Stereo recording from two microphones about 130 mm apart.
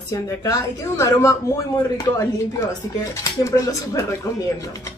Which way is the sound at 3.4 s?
25° left (ahead or behind).